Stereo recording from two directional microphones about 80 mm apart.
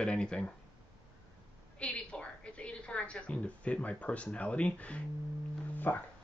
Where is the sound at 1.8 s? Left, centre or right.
Centre.